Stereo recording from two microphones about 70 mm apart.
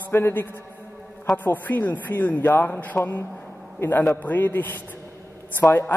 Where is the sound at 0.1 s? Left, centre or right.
Left.